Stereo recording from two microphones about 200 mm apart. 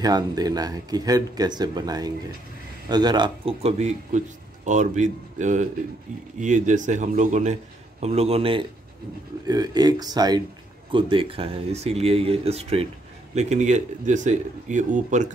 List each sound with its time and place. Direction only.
0.0 s speech: 20° right (ahead or behind); by 15.3 s 40° right (ahead or behind)